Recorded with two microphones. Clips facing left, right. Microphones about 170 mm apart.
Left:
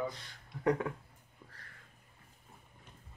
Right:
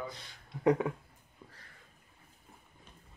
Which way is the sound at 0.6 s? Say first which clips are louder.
Right 4 dB; 15° right (ahead or behind).